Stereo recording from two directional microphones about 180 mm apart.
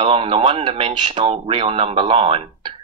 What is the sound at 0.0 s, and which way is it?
Speech, 30° right (ahead or behind).